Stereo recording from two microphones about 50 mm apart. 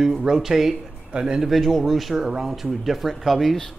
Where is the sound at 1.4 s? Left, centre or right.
Centre.